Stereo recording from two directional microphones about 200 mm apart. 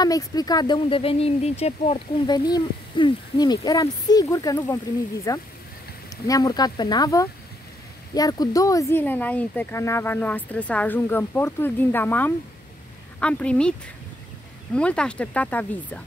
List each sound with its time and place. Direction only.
0.0 s speech: 20° left (ahead or behind)